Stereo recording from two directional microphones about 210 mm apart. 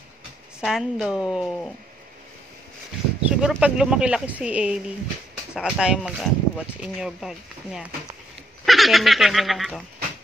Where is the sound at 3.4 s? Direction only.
5° right (ahead or behind).